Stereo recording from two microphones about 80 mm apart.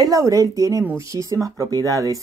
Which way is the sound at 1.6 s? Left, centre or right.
Right.